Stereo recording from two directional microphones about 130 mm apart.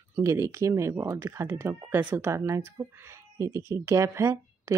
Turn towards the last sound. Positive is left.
turn(degrees=-20)  # may be behind; listen again after turning